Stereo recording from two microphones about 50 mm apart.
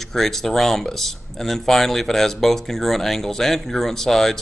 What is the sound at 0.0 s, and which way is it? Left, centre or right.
A man's voice, centre.